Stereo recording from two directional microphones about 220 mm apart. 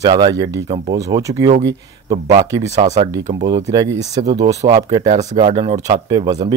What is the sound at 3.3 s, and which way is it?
Speech, 20° right (ahead or behind).